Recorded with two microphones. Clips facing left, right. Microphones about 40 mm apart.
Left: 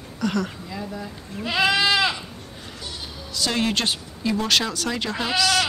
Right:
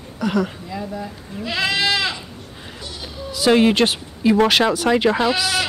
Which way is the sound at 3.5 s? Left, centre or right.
Right.